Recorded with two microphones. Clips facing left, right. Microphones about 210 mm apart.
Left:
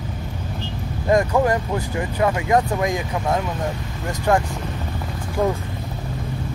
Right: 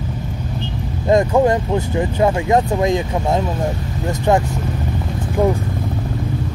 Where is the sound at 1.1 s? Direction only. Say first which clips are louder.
Right 4 dB; 25° right (ahead or behind).